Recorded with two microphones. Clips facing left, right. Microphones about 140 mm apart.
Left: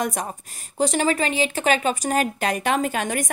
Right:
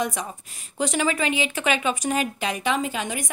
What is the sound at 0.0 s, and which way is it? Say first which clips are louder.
A woman's voice: left 1 dB; 45° left (ahead or behind).